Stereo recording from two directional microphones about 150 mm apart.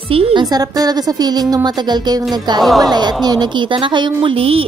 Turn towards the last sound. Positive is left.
turn(degrees=-40)  # may be behind; listen again after turning